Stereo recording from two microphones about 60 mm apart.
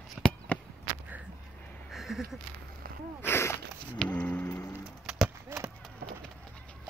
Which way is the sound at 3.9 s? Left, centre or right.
Left.